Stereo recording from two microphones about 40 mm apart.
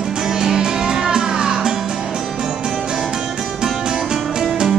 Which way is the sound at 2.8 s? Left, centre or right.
Centre.